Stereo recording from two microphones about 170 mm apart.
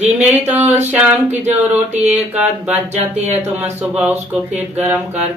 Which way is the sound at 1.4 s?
40° right (ahead or behind).